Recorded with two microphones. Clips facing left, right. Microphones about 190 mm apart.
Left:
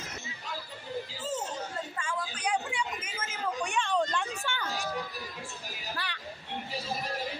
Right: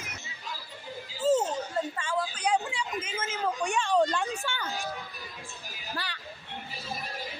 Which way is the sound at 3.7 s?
40° right (ahead or behind).